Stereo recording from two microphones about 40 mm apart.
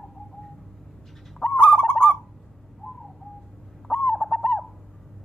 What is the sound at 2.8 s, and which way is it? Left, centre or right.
Bird, centre.